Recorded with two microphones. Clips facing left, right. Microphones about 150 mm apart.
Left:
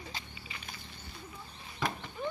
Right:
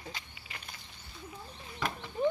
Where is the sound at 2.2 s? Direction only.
35° right (ahead or behind).